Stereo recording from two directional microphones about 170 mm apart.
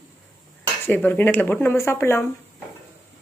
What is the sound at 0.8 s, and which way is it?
Speech, 10° left (ahead or behind).